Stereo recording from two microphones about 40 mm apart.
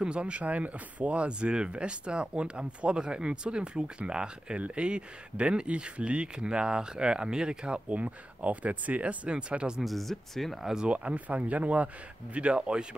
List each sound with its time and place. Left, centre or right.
0.0 s speech: right
7.9 s speech: right
9.8 s speech: centre
10.9 s speech: right
12.4 s speech: right